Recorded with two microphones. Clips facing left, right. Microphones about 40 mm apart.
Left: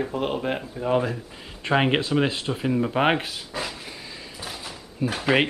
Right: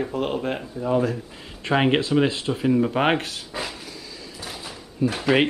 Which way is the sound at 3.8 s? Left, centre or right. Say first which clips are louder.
Even; left.